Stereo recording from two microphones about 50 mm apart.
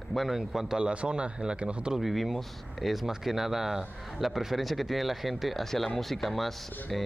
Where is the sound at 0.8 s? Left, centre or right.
Right.